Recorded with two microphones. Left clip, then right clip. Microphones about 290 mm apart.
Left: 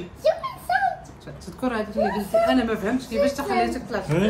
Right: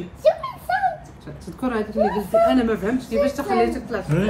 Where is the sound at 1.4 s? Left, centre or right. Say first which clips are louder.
Right 2 dB; centre.